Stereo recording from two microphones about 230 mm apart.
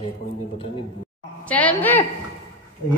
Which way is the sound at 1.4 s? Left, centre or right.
Centre.